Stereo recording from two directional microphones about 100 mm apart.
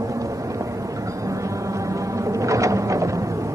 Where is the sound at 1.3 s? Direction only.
30° right (ahead or behind).